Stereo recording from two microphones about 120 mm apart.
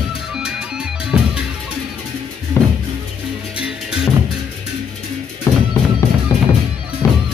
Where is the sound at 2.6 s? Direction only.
20° left (ahead or behind).